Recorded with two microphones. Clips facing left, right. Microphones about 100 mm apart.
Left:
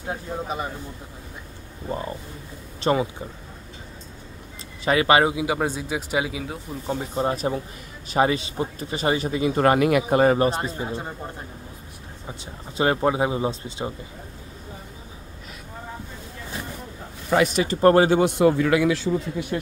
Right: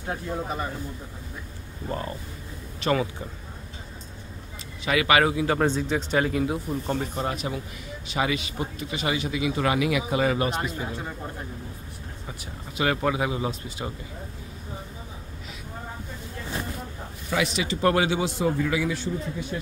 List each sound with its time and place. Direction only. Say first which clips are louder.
0.0 s speech: even; 15° left (ahead or behind)
1.9 s speech: left 2 dB; 15° left (ahead or behind)
4.8 s speech: left 3 dB; 30° left (ahead or behind)
5.3 s speech: right 1 dB; 10° left (ahead or behind)
6.4 s speech: right 6 dB; centre (ahead or behind)
7.3 s speech: left 5 dB; 40° left (ahead or behind)
12.7 s speech: left 4 dB; 30° left (ahead or behind)
17.3 s speech: left 6 dB; 45° left (ahead or behind)
18.2 s speech: left 7 dB; 65° left (ahead or behind)